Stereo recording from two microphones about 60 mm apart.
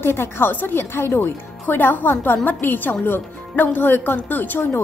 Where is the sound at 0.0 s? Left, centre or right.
Left.